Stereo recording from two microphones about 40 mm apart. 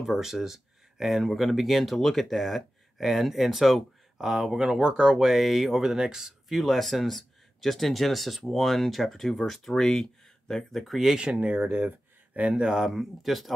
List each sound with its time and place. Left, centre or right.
0.0 s speech: centre
5.1 s speech: centre
6.6 s speech: centre
10.7 s speech: centre
11.1 s speech: right
11.4 s speech: right
12.6 s speech: centre